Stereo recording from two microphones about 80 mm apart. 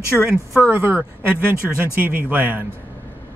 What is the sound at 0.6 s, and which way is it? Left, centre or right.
Speech, right.